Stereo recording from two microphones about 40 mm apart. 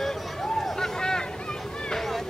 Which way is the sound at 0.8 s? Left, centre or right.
Centre.